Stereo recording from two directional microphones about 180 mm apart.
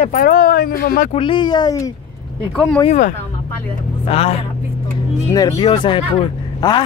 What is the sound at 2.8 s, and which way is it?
Speech, 40° left (ahead or behind).